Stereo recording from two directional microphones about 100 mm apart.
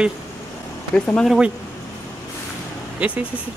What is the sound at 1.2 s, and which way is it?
Speech, 10° right (ahead or behind).